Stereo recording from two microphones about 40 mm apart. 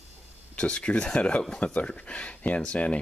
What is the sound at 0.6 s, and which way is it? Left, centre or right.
Speech, left.